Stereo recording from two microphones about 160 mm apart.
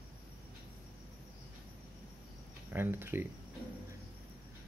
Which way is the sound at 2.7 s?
15° right (ahead or behind).